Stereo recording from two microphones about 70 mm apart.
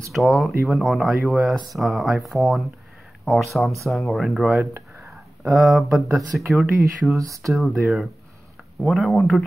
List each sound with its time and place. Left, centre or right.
0.1 s speech: centre
4.7 s a sound: right
5.1 s speech: centre